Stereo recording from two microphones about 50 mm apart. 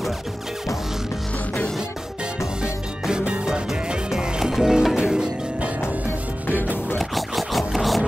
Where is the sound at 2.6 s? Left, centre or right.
Centre.